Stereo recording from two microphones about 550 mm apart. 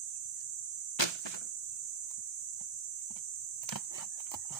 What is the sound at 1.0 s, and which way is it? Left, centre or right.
Cricket, left.